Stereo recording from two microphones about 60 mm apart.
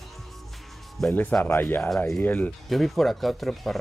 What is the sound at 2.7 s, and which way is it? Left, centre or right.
Speech, centre.